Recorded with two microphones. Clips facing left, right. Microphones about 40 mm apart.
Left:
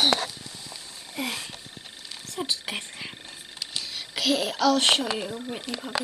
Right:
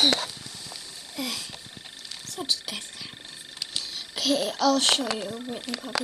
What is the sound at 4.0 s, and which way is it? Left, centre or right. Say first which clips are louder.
Speech: left 1 dB; left.